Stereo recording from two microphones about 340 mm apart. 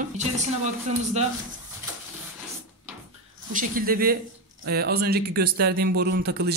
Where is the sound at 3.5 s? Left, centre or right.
Right.